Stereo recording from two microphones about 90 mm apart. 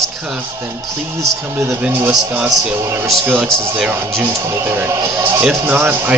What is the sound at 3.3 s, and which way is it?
Speech, 5° left (ahead or behind).